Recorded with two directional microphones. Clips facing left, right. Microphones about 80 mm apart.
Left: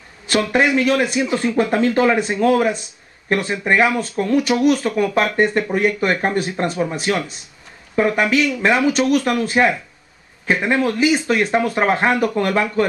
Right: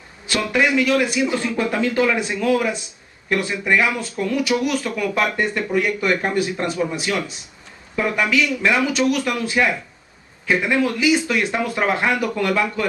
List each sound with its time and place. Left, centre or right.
0.3 s speech: left